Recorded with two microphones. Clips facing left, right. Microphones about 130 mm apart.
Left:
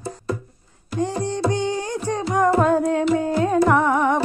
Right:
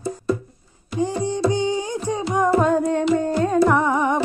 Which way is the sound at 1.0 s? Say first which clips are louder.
Right 1 dB; centre (ahead or behind).